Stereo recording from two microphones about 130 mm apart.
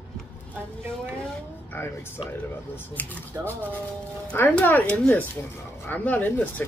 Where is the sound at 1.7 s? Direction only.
20° left (ahead or behind).